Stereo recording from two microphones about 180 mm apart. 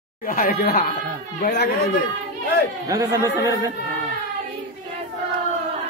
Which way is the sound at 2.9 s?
20° right (ahead or behind).